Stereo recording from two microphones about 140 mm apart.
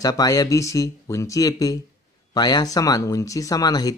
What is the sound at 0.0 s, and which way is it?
Speech, 25° left (ahead or behind).